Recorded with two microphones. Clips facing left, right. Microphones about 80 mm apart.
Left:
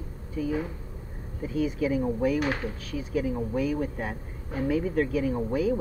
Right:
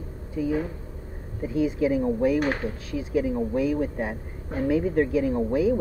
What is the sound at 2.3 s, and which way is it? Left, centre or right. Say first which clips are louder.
Speech: right 3 dB; right.